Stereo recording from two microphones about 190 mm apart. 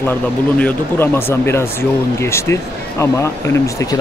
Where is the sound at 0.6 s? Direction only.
10° left (ahead or behind).